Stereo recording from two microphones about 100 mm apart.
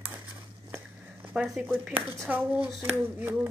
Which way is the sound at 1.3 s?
10° right (ahead or behind).